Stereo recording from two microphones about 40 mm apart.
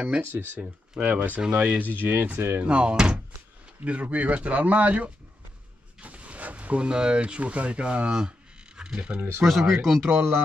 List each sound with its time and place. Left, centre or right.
0.3 s speech: right
1.4 s speech: right
2.0 s speech: right
2.6 s speech: right
3.8 s speech: right
9.4 s speech: centre
10.0 s speech: right